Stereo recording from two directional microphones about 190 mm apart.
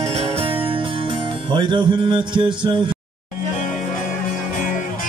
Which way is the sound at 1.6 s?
25° right (ahead or behind).